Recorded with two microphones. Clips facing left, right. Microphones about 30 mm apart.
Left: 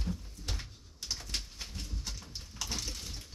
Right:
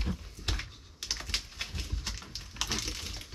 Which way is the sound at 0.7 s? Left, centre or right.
Right.